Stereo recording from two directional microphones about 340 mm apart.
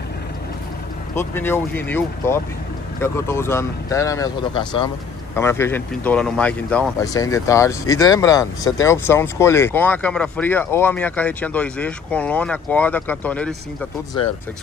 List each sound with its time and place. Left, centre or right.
1.1 s speech: centre